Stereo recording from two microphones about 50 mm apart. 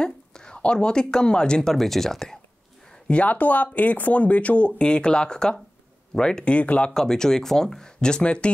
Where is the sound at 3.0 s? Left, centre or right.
Left.